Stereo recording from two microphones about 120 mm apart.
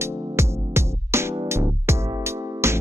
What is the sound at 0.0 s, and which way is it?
Music, 20° right (ahead or behind).